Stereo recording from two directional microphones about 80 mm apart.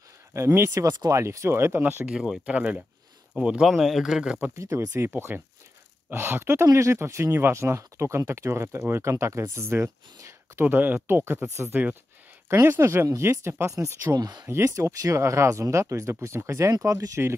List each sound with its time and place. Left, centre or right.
0.3 s speech: right
2.0 s speech: centre
4.6 s speech: right
14.1 s speech: right
14.4 s speech: right